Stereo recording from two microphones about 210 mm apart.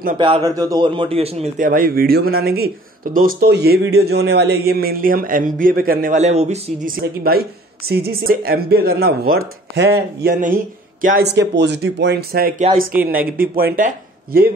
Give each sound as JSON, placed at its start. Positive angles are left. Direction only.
{"t": 0.2, "sound": "a man's voice", "side_deg": -20}
{"t": 7.0, "sound": "speech", "side_deg": -45}
{"t": 12.9, "sound": "a man's voice", "side_deg": -10}
{"t": 13.7, "sound": "speech", "side_deg": -40}